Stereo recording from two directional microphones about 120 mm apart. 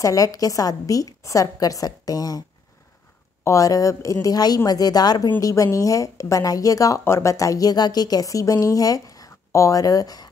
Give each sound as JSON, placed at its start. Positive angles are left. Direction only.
{"t": 0.0, "sound": "speech", "side_deg": 30}
{"t": 3.4, "sound": "speech", "side_deg": 30}